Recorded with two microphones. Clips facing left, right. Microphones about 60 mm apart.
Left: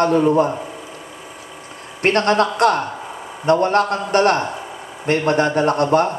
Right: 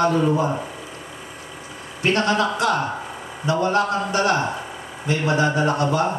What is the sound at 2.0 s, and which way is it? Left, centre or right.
A woman's voice, left.